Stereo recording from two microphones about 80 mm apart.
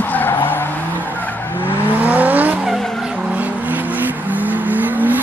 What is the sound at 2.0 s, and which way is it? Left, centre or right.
Vehicle, right.